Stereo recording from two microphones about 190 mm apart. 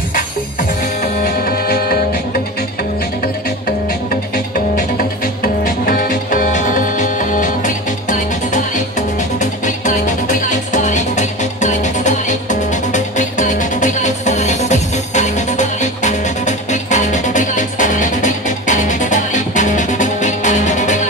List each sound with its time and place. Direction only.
1.2 s music: 50° left (ahead or behind)
5.4 s music: 50° left (ahead or behind)